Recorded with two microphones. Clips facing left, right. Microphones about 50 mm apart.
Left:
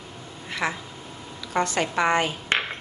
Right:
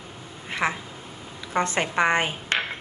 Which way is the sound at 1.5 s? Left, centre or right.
Right.